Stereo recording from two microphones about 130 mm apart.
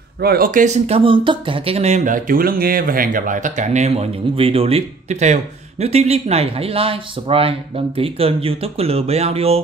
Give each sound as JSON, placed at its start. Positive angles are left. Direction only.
{"t": 0.4, "sound": "speech", "side_deg": -90}
{"t": 0.8, "sound": "speech", "side_deg": -45}